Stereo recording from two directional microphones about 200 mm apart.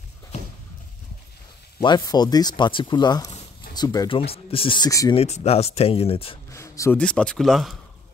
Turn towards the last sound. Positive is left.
turn(degrees=0)  # may be behind; listen again after turning